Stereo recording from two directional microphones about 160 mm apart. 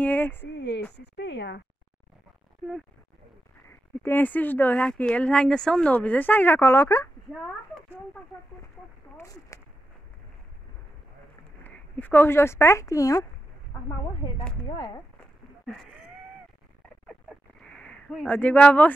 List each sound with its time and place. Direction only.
0.0 s speech: 10° left (ahead or behind)
0.5 s a woman's voice: 90° left
4.0 s speech: 10° left (ahead or behind)
9.1 s a sound: 20° left (ahead or behind)
11.6 s speech: 10° left (ahead or behind)
14.2 s speech: 35° left (ahead or behind)
15.6 s cat: centre (ahead or behind)
17.1 s a sound: 5° left (ahead or behind)